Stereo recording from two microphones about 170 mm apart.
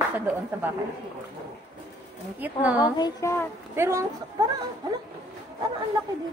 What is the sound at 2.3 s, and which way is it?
Speech, 10° right (ahead or behind).